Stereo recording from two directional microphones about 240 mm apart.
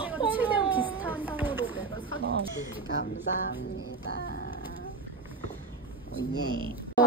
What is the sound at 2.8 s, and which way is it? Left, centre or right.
Speech, left.